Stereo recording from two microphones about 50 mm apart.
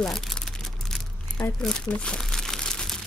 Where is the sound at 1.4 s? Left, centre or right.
Left.